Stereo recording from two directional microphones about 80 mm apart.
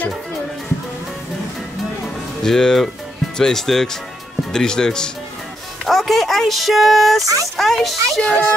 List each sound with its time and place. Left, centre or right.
2.4 s speech: centre
8.2 s speech: centre